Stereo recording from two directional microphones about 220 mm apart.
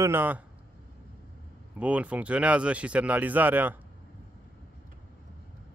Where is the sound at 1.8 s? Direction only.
5° right (ahead or behind).